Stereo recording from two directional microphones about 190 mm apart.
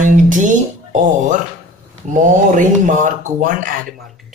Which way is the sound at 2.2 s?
45° right (ahead or behind).